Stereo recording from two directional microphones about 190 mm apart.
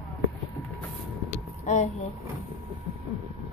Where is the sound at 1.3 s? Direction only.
40° left (ahead or behind).